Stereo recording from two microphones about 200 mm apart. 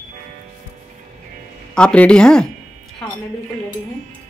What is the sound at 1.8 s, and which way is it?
Speech, 5° left (ahead or behind).